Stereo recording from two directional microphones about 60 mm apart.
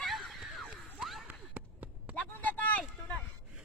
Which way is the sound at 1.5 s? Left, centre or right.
Right.